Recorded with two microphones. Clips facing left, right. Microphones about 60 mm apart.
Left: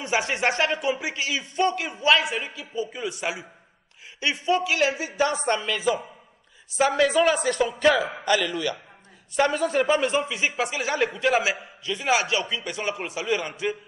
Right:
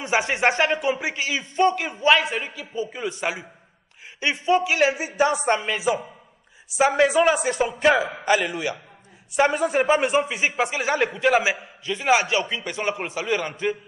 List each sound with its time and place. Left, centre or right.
0.0 s a man's voice: right
6.8 s a man's voice: right